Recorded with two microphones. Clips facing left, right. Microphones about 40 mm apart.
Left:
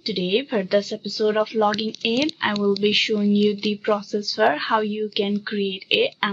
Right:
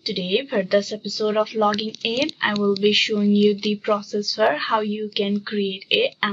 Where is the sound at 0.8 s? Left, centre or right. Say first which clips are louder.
Left 1 dB; centre.